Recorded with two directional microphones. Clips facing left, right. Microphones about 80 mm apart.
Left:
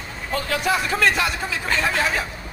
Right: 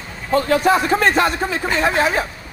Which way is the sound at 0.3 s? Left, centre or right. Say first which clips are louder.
Right 8 dB; right.